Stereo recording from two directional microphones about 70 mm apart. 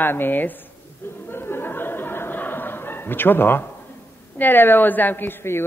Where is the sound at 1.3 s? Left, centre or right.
Left.